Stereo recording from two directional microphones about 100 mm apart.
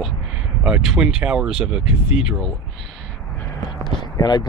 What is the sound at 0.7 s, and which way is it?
Speech, 10° right (ahead or behind).